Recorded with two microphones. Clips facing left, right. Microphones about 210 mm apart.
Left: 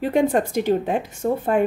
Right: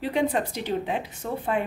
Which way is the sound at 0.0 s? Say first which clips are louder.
Left 6 dB; 50° left (ahead or behind).